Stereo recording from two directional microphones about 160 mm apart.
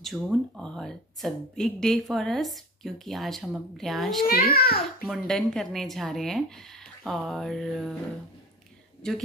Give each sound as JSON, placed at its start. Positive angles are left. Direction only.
{"t": 0.0, "sound": "speech", "side_deg": 0}
{"t": 4.3, "sound": "a child's voice", "side_deg": 70}
{"t": 5.0, "sound": "speech", "side_deg": 0}
{"t": 9.0, "sound": "speech", "side_deg": 5}